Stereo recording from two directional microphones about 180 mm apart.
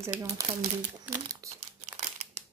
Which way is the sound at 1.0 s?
15° right (ahead or behind).